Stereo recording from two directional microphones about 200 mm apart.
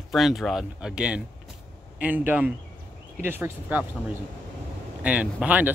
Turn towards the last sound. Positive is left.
turn(degrees=-5)  # may be behind; listen again after turning